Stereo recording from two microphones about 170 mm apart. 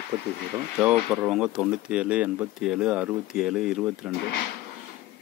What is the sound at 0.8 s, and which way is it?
Speech, 5° right (ahead or behind).